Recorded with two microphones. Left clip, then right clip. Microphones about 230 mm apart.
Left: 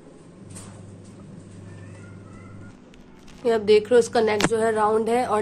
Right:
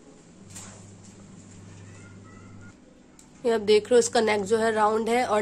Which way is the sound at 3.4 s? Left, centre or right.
Centre.